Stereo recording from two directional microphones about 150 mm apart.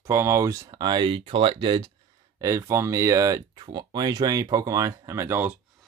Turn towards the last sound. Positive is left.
turn(degrees=-15)  # may be behind; listen again after turning